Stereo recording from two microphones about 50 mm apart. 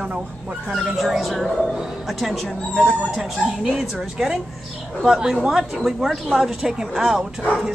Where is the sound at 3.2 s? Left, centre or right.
Centre.